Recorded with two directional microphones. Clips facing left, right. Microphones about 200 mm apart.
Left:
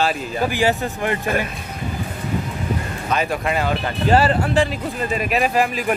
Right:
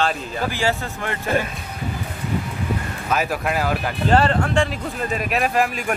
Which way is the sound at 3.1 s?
5° right (ahead or behind).